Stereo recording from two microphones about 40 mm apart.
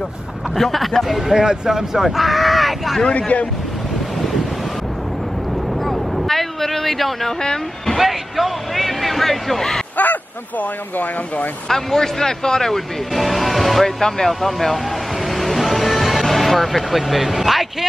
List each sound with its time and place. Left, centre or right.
0.6 s speech: centre
3.0 s speech: left
5.9 s vehicle: centre
7.4 s speech: centre
8.0 s a sound: centre
11.7 s speech: centre
13.1 s music: centre
13.8 s speech: centre
15.3 s music: centre